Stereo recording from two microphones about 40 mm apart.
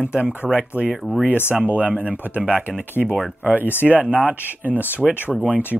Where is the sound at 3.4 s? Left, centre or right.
Right.